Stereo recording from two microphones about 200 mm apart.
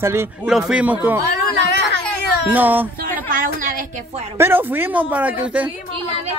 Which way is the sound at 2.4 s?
10° right (ahead or behind).